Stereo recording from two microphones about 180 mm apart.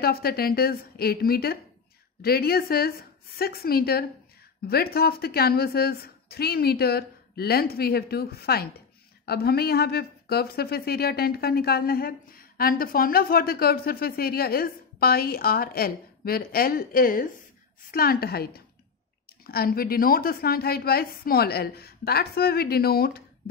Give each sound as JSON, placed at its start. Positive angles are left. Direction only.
{"t": 0.0, "sound": "speech", "side_deg": 60}